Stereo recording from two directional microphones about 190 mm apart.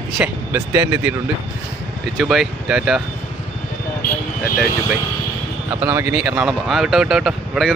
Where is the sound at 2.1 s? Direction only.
Centre (ahead or behind).